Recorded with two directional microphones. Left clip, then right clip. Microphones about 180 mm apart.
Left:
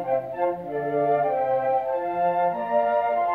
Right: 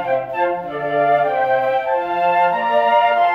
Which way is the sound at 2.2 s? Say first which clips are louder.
Right 7 dB; 15° right (ahead or behind).